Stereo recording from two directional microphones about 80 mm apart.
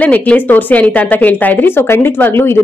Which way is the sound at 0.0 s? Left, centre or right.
Centre.